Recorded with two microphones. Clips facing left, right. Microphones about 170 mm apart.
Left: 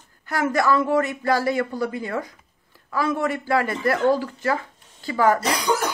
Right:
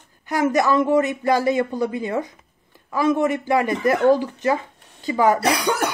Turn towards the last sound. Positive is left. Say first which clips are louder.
# right 2 dB
turn(degrees=-60)  # may be behind; listen again after turning